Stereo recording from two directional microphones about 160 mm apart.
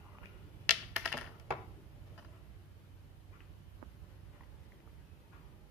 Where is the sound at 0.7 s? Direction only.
Centre (ahead or behind).